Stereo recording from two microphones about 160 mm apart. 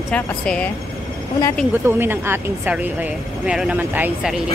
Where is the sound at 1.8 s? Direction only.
15° right (ahead or behind).